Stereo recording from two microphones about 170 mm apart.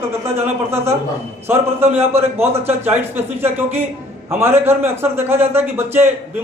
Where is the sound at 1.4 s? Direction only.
15° right (ahead or behind).